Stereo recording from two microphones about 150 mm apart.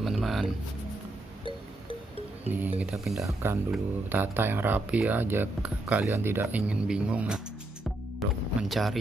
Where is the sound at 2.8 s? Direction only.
Centre (ahead or behind).